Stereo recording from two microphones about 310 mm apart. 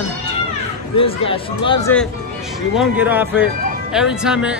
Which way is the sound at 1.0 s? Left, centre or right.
Centre.